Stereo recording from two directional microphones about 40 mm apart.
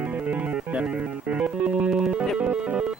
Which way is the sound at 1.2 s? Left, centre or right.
Right.